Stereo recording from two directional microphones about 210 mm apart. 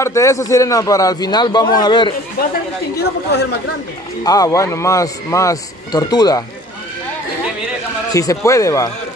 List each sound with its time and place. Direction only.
0.0 s a man's voice: 15° left (ahead or behind)
2.4 s speech: 45° left (ahead or behind)
4.2 s a man's voice: 15° left (ahead or behind)
8.1 s a man's voice: 15° left (ahead or behind)